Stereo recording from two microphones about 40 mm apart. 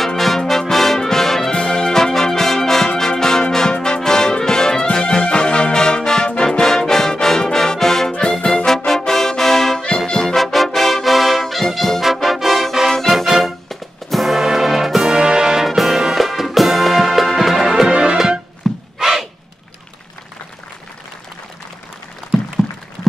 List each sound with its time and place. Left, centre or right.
0.0 s music: centre
8.1 s music: left
8.6 s music: centre
9.9 s brass instrument: centre
12.0 s brass instrument: centre
13.1 s music: centre
15.2 s music: centre
15.6 s music: centre
18.6 s a sound: centre
22.6 s a sound: centre